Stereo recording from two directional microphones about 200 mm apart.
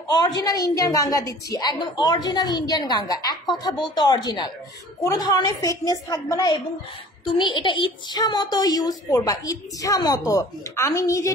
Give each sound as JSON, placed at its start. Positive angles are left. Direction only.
{"t": 0.4, "sound": "a woman's voice", "side_deg": 20}